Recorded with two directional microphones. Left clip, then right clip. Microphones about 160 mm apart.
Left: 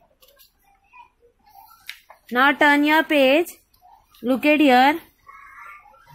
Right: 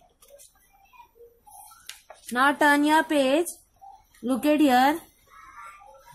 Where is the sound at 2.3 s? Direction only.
20° left (ahead or behind).